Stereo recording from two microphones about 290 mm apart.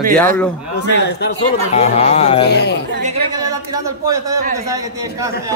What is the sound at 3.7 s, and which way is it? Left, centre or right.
Speech, centre.